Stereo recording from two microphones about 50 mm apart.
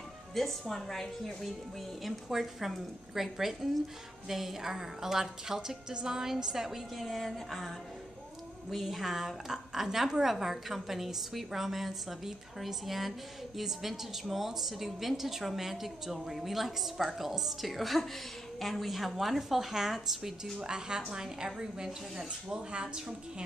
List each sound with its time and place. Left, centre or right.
0.3 s a woman's voice: centre
2.0 s a woman's voice: centre